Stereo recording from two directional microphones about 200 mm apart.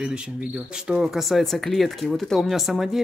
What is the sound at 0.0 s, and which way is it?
Speech, 5° right (ahead or behind).